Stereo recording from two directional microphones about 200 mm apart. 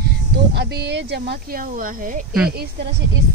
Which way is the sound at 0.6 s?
55° right (ahead or behind).